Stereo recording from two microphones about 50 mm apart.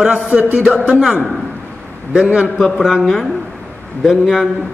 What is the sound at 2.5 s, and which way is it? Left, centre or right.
A man's voice, centre.